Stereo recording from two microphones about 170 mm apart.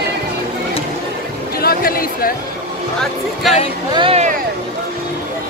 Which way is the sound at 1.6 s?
60° left (ahead or behind).